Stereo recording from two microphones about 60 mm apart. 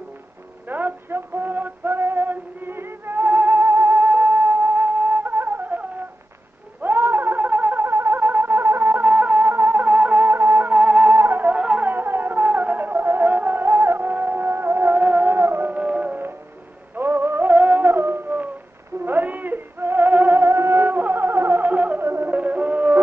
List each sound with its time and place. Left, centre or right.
0.7 s music: right
6.8 s a sound: right
10.7 s music: right
11.1 s music: right
11.4 s music: right
11.9 s music: right
15.0 s music: right
15.3 s music: right
15.7 s music: right
16.9 s music: right
19.0 s music: right
22.0 s music: right
22.3 s music: right